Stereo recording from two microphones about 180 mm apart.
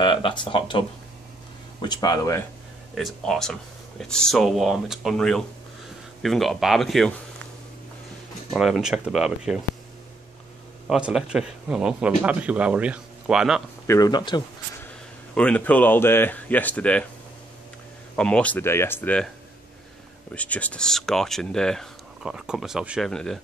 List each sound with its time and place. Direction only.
0.0 s speech: 25° left (ahead or behind)
2.9 s speech: centre (ahead or behind)
8.5 s speech: centre (ahead or behind)
10.9 s speech: 5° right (ahead or behind)
13.8 s speech: 20° left (ahead or behind)
15.3 s speech: 5° left (ahead or behind)
18.1 s speech: 5° left (ahead or behind)
20.3 s speech: 10° left (ahead or behind)